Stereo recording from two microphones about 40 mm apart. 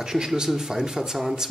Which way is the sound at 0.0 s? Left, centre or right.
Centre.